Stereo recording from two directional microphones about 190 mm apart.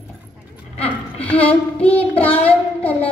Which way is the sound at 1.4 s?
30° left (ahead or behind).